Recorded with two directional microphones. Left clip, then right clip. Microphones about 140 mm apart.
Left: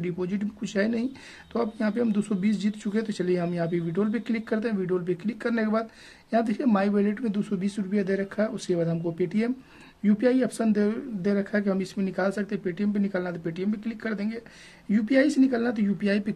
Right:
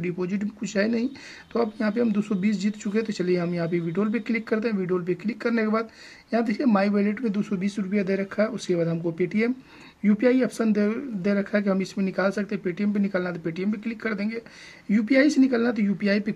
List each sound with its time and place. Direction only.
0.0 s speech: 20° right (ahead or behind)